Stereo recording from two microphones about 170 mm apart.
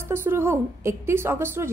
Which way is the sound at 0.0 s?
15° right (ahead or behind).